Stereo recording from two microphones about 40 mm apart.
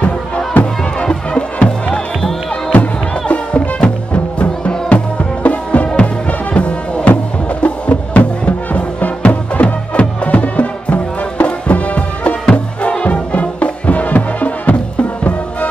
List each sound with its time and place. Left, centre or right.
0.6 s music: left
0.9 s music: left
2.7 s music: left